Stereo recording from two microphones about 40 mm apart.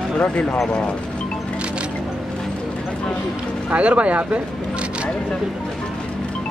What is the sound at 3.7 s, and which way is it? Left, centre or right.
Speech, right.